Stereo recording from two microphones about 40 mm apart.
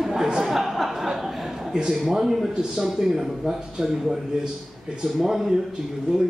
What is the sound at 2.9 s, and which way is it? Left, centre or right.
A man's voice, centre.